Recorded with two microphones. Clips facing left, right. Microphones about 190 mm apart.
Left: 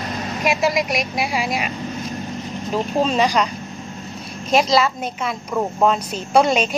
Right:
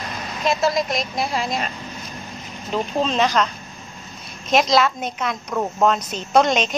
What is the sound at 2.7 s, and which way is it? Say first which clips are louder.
Speech: left 2 dB; 10° left (ahead or behind).